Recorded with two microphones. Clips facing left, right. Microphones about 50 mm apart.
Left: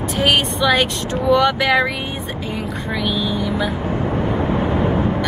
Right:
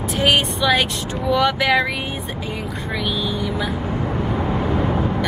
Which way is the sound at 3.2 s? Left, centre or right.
Centre.